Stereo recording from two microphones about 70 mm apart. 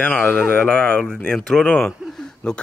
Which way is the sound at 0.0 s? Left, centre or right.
Centre.